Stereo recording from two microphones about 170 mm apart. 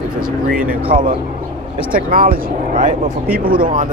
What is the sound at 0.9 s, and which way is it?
Speech, 50° right (ahead or behind).